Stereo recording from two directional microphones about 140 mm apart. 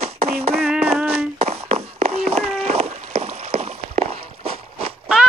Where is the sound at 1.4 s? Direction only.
45° right (ahead or behind).